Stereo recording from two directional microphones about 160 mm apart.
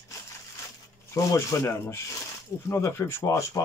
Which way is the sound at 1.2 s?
20° left (ahead or behind).